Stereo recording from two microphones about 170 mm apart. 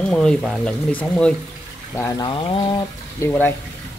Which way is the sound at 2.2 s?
30° left (ahead or behind).